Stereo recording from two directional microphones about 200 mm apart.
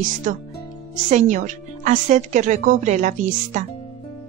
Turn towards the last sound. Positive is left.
turn(degrees=-35)  # may be behind; listen again after turning